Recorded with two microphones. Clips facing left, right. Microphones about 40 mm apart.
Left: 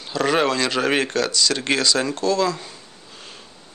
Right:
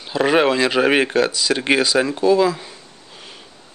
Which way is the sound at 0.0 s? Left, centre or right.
Centre.